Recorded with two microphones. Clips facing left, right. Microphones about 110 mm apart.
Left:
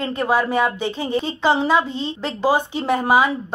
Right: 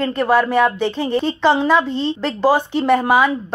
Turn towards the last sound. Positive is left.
turn(degrees=15)  # may be behind; listen again after turning